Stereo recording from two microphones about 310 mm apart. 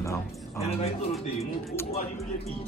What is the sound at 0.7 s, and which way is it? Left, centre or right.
Speech, centre.